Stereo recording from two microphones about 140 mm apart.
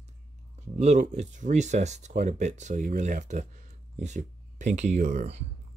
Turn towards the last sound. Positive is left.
turn(degrees=-55)  # may be behind; listen again after turning